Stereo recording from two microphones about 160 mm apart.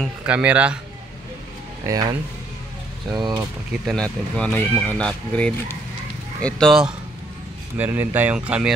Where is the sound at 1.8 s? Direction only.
20° right (ahead or behind).